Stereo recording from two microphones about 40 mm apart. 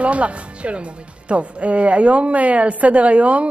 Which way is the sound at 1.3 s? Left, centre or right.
Right.